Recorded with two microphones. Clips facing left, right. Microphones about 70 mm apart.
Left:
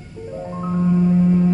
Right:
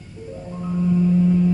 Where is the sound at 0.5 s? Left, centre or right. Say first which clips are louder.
Left 2 dB; left.